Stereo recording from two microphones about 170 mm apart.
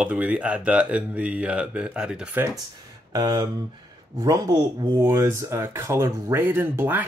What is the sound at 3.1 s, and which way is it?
Speech, 25° right (ahead or behind).